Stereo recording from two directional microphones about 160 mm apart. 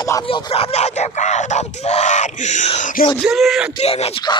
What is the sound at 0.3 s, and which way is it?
Speech, 35° left (ahead or behind).